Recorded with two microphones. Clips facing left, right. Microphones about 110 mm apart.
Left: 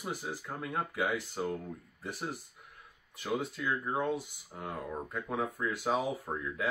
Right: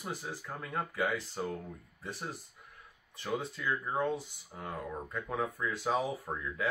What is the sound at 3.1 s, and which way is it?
Speech, 5° left (ahead or behind).